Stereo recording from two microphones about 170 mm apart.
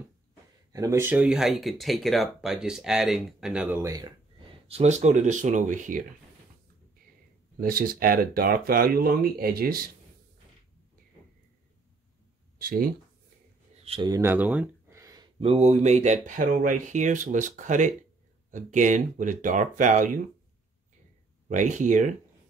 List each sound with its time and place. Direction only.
0.7 s speech: 20° right (ahead or behind)
3.8 s speech: 20° right (ahead or behind)
4.6 s speech: 40° right (ahead or behind)
7.6 s speech: 60° right (ahead or behind)
12.5 s speech: 60° right (ahead or behind)
13.8 s speech: 30° right (ahead or behind)
14.2 s a sound: 10° right (ahead or behind)
15.3 s speech: 40° right (ahead or behind)
21.5 s speech: 45° right (ahead or behind)